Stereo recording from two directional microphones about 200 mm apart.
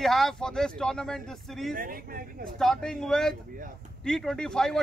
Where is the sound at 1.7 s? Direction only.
45° right (ahead or behind).